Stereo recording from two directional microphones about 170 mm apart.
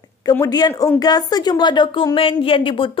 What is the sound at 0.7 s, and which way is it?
Speech, 10° left (ahead or behind).